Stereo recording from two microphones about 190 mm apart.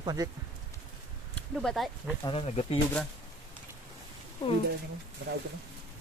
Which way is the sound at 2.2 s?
30° left (ahead or behind).